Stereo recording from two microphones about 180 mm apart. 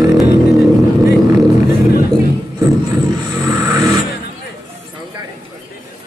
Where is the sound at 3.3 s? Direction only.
20° right (ahead or behind).